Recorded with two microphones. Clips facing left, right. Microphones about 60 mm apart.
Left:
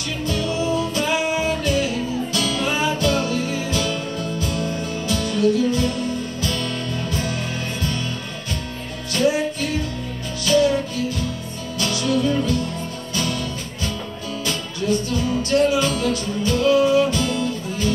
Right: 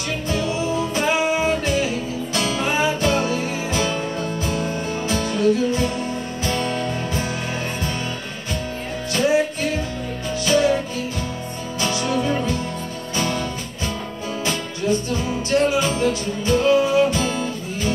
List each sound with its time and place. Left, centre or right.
0.3 s music: right
10.4 s music: right
11.8 s music: right
14.4 s music: right